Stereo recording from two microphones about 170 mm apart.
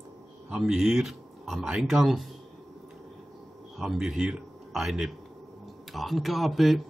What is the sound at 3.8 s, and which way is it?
A man's voice, centre (ahead or behind).